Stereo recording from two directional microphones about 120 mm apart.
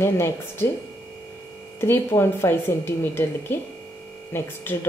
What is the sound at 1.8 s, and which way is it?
A woman's voice, 20° left (ahead or behind).